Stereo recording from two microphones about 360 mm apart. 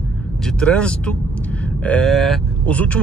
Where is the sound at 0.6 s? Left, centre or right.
Centre.